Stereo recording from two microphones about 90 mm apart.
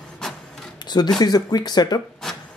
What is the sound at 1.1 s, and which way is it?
Speech, 50° left (ahead or behind).